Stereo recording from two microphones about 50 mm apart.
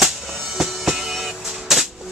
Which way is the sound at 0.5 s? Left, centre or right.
Centre.